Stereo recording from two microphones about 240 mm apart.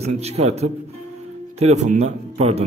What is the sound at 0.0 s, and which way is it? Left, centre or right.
A man's voice, right.